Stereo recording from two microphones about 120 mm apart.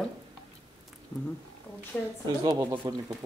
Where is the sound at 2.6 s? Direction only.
25° right (ahead or behind).